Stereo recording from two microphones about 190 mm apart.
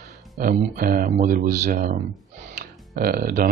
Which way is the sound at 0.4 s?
50° right (ahead or behind).